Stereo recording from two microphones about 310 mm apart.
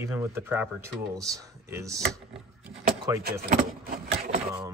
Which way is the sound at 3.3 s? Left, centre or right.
Right.